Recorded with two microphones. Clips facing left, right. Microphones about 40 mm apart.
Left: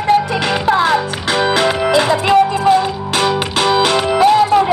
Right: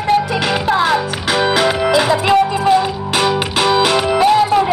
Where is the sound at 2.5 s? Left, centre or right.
Centre.